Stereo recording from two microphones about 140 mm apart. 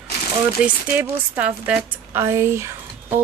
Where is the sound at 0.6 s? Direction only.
10° right (ahead or behind).